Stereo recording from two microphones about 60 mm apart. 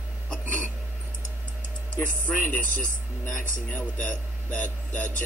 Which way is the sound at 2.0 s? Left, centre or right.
Left.